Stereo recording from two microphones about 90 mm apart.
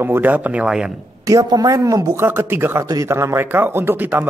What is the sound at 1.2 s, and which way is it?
Speech, 40° right (ahead or behind).